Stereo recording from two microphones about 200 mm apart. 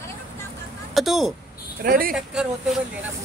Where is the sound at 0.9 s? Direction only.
Centre (ahead or behind).